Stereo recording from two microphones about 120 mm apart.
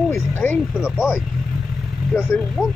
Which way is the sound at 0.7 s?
5° right (ahead or behind).